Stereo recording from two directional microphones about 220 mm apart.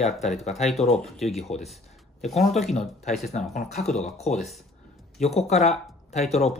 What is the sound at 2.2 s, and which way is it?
Speech, centre (ahead or behind).